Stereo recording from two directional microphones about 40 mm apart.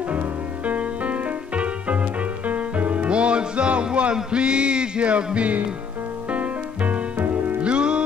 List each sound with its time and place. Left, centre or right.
0.7 s music: right
7.6 s music: right